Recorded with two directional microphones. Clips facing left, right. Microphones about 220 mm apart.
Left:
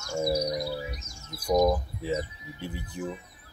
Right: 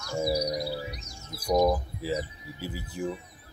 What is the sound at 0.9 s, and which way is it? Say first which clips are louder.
Speech: even; 45° left (ahead or behind).